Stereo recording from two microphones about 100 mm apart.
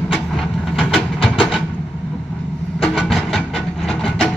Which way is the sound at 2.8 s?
Centre (ahead or behind).